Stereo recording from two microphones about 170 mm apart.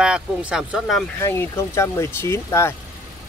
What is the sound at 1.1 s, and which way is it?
Speech, 15° left (ahead or behind).